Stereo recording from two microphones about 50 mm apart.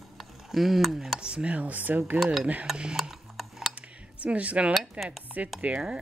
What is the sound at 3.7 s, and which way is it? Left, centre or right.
Cutlery, right.